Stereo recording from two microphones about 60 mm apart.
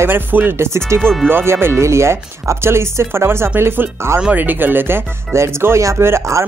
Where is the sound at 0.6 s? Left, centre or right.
Right.